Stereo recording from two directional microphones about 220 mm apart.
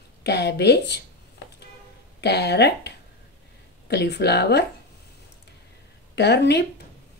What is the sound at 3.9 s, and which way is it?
Speech, 50° left (ahead or behind).